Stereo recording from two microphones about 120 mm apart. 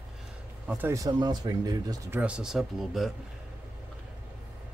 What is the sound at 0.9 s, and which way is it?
Speech, 35° right (ahead or behind).